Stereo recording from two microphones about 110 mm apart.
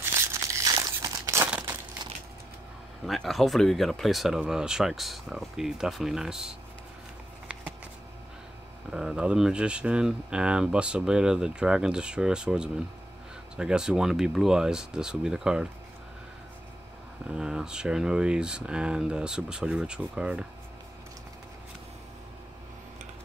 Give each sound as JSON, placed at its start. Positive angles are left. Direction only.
{"t": 0.0, "sound": "crumpling", "side_deg": -25}
{"t": 1.4, "sound": "crumpling", "side_deg": -20}
{"t": 3.1, "sound": "speech", "side_deg": 0}
{"t": 8.9, "sound": "speech", "side_deg": -5}
{"t": 17.3, "sound": "speech", "side_deg": -5}